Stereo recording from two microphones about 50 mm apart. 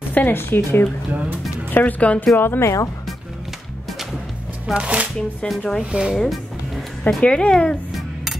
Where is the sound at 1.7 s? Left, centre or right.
Left.